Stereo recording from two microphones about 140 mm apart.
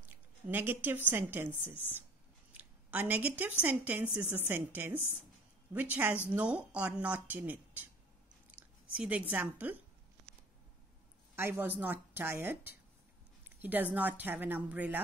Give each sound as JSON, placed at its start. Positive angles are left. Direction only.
{"t": 0.5, "sound": "speech", "side_deg": -15}
{"t": 2.5, "sound": "a woman's voice", "side_deg": -10}
{"t": 8.5, "sound": "chewing", "side_deg": -10}
{"t": 9.3, "sound": "speech", "side_deg": -10}
{"t": 11.3, "sound": "speech", "side_deg": -15}